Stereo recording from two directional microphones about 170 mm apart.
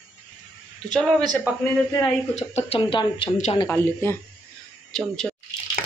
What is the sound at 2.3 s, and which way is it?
Speech, 35° left (ahead or behind).